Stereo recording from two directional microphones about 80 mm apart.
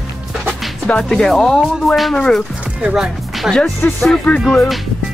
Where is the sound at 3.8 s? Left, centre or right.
Left.